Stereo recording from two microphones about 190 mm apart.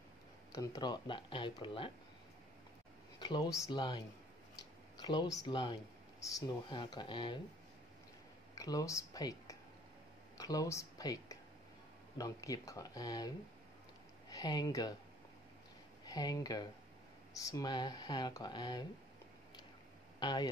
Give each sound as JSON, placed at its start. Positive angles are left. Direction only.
{"t": 0.5, "sound": "speech", "side_deg": 20}
{"t": 3.2, "sound": "speech", "side_deg": 20}
{"t": 8.5, "sound": "speech", "side_deg": 20}
{"t": 14.3, "sound": "speech", "side_deg": 20}
{"t": 16.1, "sound": "speech", "side_deg": 20}
{"t": 20.2, "sound": "speech", "side_deg": 25}